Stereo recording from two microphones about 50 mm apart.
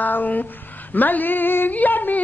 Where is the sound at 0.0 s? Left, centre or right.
Left.